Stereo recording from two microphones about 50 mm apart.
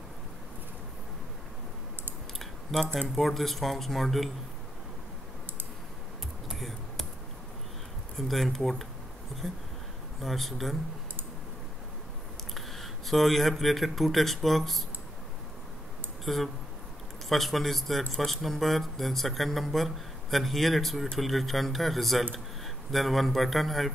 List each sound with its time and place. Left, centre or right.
2.3 s a sound: centre
3.2 s speech: centre
8.2 s speech: centre
12.5 s speech: centre
16.3 s speech: centre